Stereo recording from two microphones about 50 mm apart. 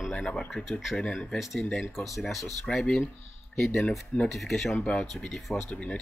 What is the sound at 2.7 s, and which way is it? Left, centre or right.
Speech, centre.